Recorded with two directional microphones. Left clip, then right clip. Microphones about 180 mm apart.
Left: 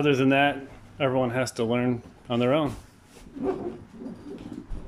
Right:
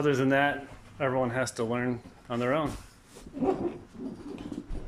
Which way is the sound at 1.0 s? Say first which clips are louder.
Left 3 dB; 10° left (ahead or behind).